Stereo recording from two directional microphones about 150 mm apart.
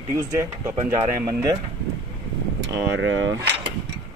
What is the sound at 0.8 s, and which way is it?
Speech, 20° right (ahead or behind).